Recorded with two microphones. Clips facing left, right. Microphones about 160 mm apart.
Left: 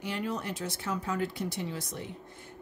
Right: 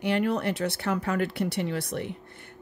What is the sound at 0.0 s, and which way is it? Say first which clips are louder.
Speech: right 8 dB; 65° right (ahead or behind).